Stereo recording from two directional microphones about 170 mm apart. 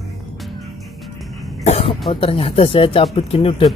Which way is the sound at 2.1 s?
30° left (ahead or behind).